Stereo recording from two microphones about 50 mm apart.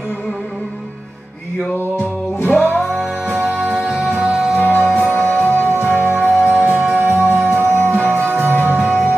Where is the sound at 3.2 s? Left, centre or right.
Right.